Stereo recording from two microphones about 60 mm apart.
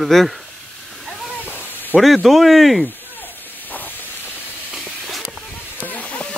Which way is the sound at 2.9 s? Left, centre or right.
Left.